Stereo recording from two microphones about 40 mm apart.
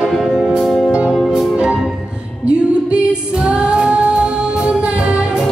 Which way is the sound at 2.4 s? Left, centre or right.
Right.